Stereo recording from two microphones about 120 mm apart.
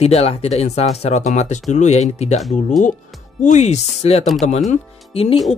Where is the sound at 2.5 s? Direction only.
90° left; by 3.9 s 75° left (ahead or behind).